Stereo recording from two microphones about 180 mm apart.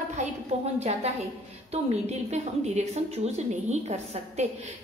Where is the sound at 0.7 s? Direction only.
35° right (ahead or behind).